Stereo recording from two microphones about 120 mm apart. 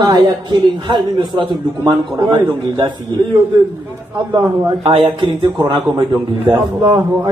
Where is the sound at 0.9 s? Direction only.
45° right (ahead or behind).